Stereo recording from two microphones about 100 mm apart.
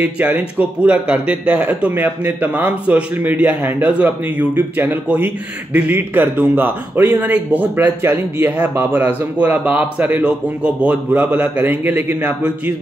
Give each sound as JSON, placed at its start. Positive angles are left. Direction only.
{"t": 0.0, "sound": "speech", "side_deg": -15}